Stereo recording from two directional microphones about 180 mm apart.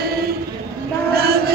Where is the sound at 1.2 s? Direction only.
60° right (ahead or behind).